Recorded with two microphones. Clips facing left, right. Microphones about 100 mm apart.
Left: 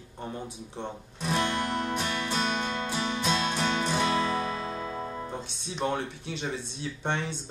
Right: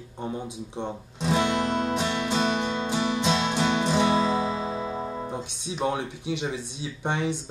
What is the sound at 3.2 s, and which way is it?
Music, 20° right (ahead or behind).